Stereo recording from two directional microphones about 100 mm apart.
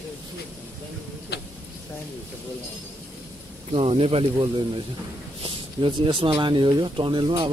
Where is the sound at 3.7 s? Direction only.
75° right (ahead or behind).